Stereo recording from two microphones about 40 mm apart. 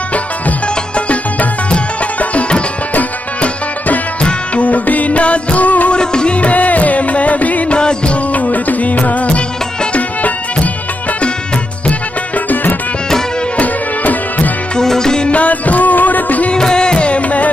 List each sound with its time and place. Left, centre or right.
0.1 s music: left
4.2 s music: left
4.6 s music: left
5.9 s music: left
7.7 s music: left
13.6 s music: left
14.8 s music: centre
15.2 s music: left
16.5 s music: centre; by 17.5 s left